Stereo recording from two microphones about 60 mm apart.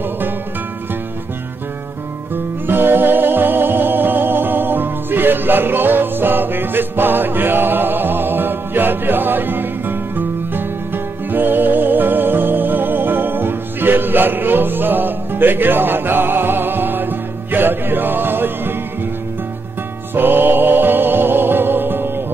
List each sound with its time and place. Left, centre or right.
2.3 s music: right
20.2 s music: right